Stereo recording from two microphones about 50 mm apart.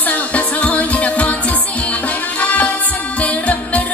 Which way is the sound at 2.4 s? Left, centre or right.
Left.